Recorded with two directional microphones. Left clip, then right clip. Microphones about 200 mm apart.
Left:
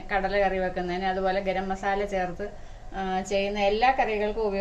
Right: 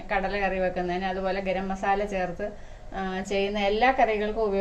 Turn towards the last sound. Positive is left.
turn(degrees=-35)  # may be behind; listen again after turning